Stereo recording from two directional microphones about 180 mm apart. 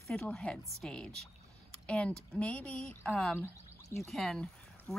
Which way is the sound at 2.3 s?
5° left (ahead or behind).